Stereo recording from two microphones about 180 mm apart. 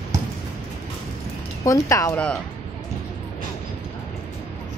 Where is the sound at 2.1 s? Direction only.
5° left (ahead or behind).